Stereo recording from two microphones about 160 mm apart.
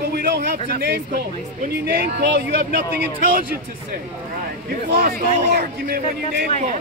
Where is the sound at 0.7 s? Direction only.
85° right.